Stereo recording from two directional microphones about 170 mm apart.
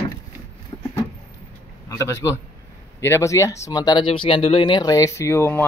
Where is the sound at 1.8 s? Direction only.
20° left (ahead or behind).